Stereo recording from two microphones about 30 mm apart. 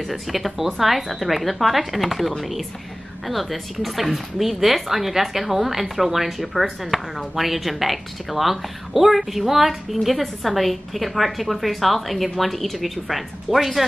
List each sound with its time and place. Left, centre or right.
0.1 s speech: centre